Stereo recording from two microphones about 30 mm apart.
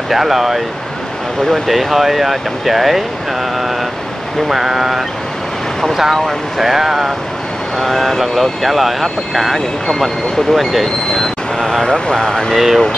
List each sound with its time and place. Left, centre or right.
0.1 s speech: centre
1.7 s speech: centre
4.5 s speech: centre
6.1 s speech: centre
7.8 s speech: centre
11.8 s speech: left
12.5 s speech: centre